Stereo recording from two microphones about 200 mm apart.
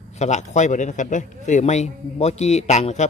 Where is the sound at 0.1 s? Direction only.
35° left (ahead or behind).